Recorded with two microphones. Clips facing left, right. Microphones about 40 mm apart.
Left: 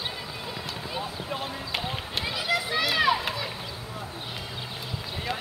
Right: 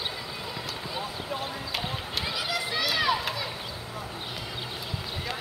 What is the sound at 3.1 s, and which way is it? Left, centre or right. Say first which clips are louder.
Crowd: left 1 dB; centre.